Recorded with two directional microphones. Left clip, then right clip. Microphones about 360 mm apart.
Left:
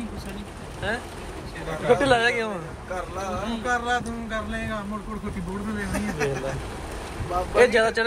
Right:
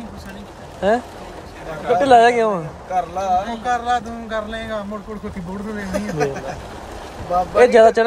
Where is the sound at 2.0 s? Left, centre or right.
Centre.